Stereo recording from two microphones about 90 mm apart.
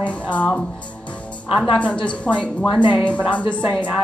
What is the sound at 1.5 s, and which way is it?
Speech, 10° right (ahead or behind).